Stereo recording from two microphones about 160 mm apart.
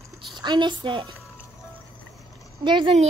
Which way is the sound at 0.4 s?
30° right (ahead or behind).